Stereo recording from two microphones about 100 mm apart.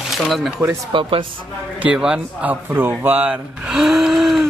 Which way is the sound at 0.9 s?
60° right (ahead or behind).